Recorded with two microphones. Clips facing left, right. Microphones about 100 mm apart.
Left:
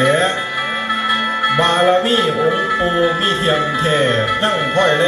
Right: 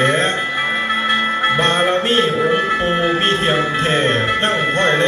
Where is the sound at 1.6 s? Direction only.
15° left (ahead or behind).